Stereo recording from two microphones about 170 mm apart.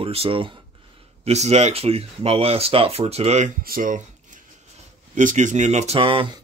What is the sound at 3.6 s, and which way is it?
Speech, 55° right (ahead or behind).